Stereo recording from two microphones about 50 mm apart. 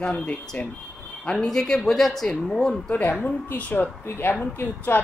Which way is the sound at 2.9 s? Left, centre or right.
Left.